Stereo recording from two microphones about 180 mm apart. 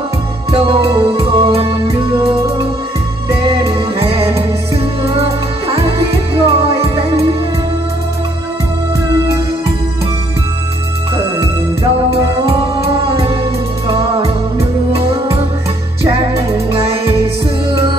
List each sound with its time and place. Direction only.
0.5 s music: 30° right (ahead or behind)
3.4 s music: 30° right (ahead or behind)
11.8 s music: 35° right (ahead or behind)
16.5 s music: 35° right (ahead or behind)